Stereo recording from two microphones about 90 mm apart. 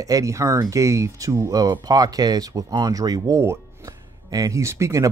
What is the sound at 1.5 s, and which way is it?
Speech, 45° right (ahead or behind).